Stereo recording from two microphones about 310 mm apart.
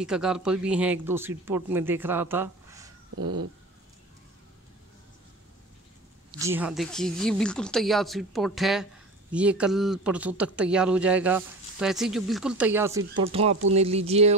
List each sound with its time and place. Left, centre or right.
0.0 s speech: centre
6.3 s speech: centre